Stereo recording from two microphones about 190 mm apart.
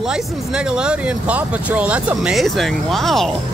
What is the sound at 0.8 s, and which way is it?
Speech, 5° right (ahead or behind).